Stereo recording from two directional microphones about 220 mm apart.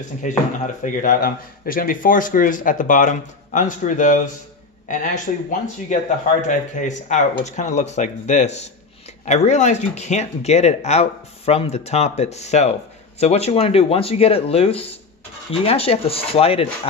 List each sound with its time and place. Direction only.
0.2 s speech: 35° left (ahead or behind)